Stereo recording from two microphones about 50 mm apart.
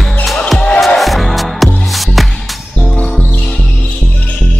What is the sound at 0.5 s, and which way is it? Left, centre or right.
Music, centre.